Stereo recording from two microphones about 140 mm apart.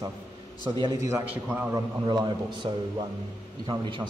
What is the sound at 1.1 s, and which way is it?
Speech, 15° right (ahead or behind).